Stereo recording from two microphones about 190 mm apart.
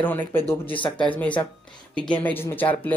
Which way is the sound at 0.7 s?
25° left (ahead or behind).